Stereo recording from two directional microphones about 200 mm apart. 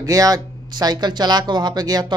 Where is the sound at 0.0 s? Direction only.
15° right (ahead or behind).